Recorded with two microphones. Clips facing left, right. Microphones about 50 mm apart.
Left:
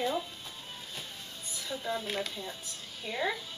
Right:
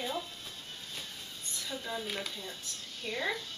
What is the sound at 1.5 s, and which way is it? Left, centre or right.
Speech, centre.